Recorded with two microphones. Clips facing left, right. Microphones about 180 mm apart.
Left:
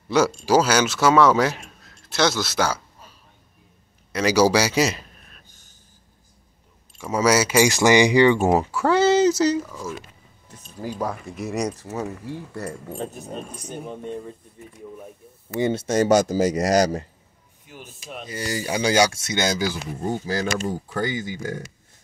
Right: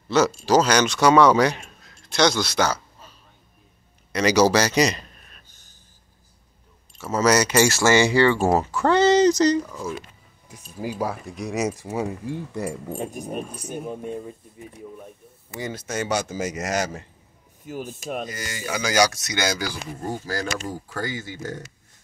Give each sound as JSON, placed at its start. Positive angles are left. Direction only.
{"t": 0.1, "sound": "a man's voice", "side_deg": 15}
{"t": 4.1, "sound": "a man's voice", "side_deg": 5}
{"t": 7.0, "sound": "speech", "side_deg": 10}
{"t": 8.7, "sound": "speech", "side_deg": 5}
{"t": 11.7, "sound": "speech", "side_deg": -15}
{"t": 15.6, "sound": "speech", "side_deg": 30}
{"t": 17.6, "sound": "speech", "side_deg": -40}
{"t": 18.3, "sound": "speech", "side_deg": 35}